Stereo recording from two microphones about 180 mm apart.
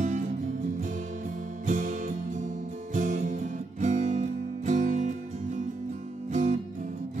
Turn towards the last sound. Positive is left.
turn(degrees=-45)  # may be behind; listen again after turning